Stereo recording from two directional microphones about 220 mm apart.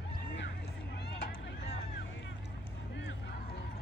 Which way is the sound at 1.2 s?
50° left (ahead or behind).